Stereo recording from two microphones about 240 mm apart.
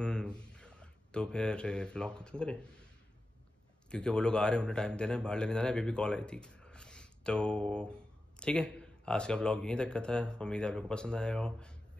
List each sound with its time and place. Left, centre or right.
0.0 s speech: centre
3.9 s a man's voice: centre